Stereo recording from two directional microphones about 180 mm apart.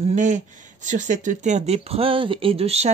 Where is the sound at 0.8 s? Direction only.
45° right (ahead or behind).